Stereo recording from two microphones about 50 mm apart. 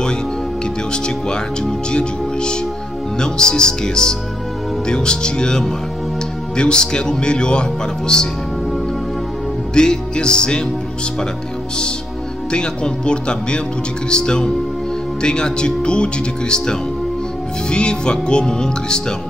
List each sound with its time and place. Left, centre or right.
0.9 s speech: centre
9.8 s speech: centre
12.4 s speech: centre